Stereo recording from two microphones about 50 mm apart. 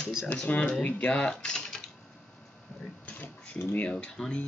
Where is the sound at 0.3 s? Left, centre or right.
Left; by 1.8 s centre.